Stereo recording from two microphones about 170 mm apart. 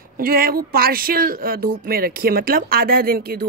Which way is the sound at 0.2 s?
60° right (ahead or behind).